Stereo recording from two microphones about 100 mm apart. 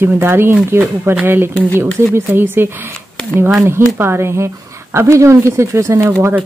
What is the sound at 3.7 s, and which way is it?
Speech, 25° right (ahead or behind).